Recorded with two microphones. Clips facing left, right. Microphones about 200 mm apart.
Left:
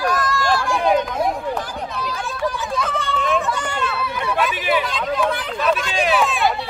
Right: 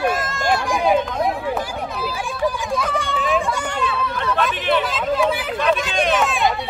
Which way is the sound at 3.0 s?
10° right (ahead or behind).